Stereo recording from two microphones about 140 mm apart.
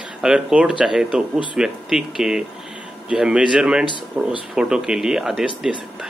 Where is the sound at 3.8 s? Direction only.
35° left (ahead or behind).